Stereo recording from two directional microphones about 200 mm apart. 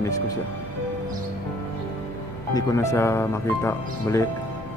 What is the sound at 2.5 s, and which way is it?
Speech, 15° left (ahead or behind).